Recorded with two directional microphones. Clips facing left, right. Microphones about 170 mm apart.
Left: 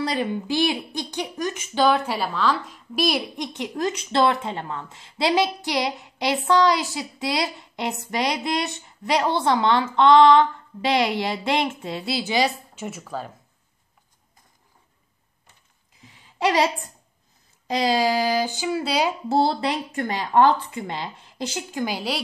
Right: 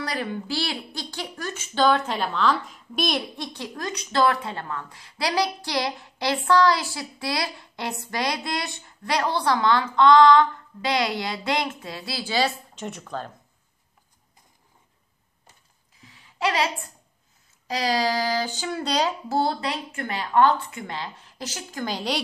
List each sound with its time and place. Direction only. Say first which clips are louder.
0.0 s speech: left 4 dB; 20° left (ahead or behind); by 3.3 s 5° left (ahead or behind)
3.3 s speech: left 6 dB; 20° left (ahead or behind); by 13.3 s 5° left (ahead or behind)
16.0 s a sound: left 3 dB; 20° left (ahead or behind)
17.8 s speech: left 3 dB; 15° left (ahead or behind)
19.2 s speech: left 4 dB; 25° left (ahead or behind)
20.3 s speech: left 2 dB; 20° left (ahead or behind); by 22.2 s 5° left (ahead or behind)